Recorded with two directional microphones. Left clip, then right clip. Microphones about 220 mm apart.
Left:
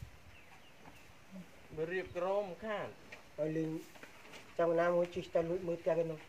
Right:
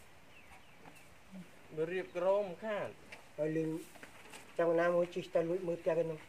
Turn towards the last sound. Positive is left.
turn(degrees=-30)  # may be behind; listen again after turning